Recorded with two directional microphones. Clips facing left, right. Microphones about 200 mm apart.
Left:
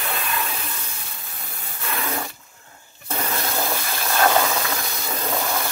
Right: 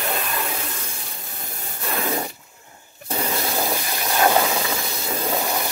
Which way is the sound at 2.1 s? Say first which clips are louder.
Right 3 dB; 15° right (ahead or behind).